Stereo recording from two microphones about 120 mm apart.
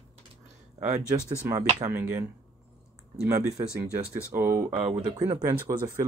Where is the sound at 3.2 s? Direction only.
25° right (ahead or behind).